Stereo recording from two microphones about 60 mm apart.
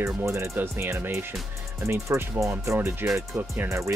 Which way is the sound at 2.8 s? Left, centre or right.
Right.